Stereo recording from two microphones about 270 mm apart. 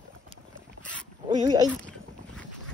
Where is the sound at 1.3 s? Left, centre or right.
Centre.